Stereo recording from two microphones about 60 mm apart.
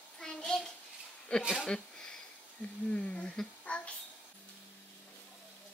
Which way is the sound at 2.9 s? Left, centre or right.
Centre.